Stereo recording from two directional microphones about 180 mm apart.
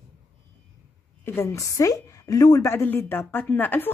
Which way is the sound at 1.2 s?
15° left (ahead or behind).